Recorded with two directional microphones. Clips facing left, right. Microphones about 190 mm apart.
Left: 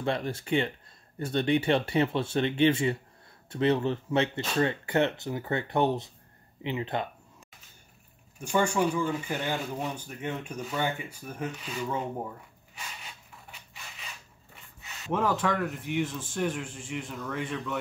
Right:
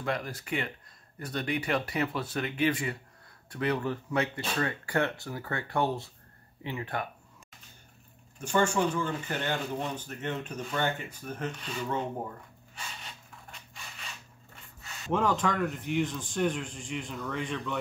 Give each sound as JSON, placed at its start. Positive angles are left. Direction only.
{"t": 0.0, "sound": "speech", "side_deg": 25}
{"t": 8.4, "sound": "speech", "side_deg": 10}
{"t": 12.7, "sound": "rub", "side_deg": 5}
{"t": 15.1, "sound": "a man's voice", "side_deg": 5}